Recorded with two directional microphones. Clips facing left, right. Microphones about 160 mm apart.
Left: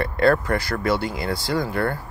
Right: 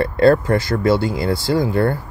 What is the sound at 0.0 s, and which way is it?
Speech, 30° right (ahead or behind).